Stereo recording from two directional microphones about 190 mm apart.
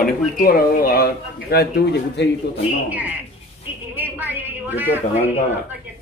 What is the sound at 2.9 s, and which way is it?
Speech, 10° right (ahead or behind).